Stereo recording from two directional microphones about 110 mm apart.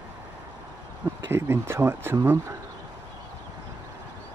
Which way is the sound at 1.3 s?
20° right (ahead or behind).